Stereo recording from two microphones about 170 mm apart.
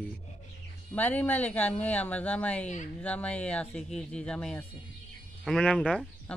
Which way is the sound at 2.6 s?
45° left (ahead or behind).